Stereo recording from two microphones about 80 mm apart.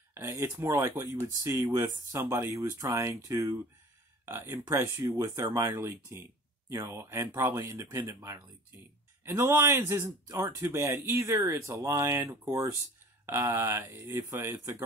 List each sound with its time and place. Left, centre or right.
0.1 s speech: right
4.3 s speech: right